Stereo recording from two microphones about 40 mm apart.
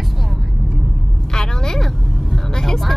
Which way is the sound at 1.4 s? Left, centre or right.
Centre.